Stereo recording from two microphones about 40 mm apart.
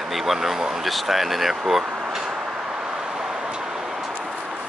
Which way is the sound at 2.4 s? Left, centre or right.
Centre.